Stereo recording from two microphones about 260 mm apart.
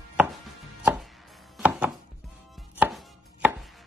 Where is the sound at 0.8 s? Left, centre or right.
Centre.